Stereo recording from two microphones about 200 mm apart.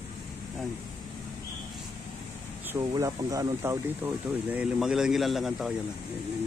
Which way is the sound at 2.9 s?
15° right (ahead or behind).